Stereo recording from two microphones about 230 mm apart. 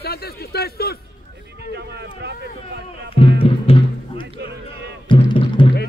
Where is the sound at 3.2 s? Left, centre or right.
Left.